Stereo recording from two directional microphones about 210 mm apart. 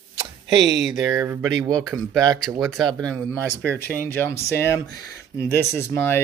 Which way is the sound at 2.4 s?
Centre (ahead or behind).